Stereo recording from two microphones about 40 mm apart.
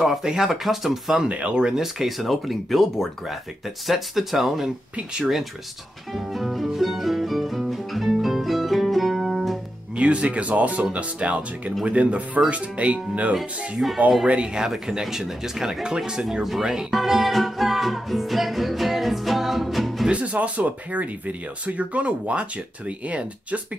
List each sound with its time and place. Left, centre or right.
0.2 s speech: centre
1.3 s speech: right
1.8 s speech: centre
6.1 s music: centre
9.9 s speech: right
13.8 s speech: right
14.2 s speech: right
14.5 s speech: centre
16.9 s music: centre
20.1 s speech: right